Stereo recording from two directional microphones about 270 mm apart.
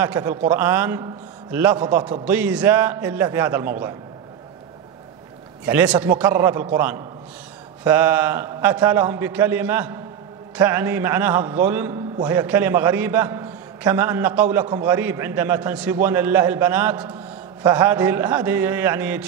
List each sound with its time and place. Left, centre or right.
0.0 s a man's voice: centre
5.7 s a man's voice: centre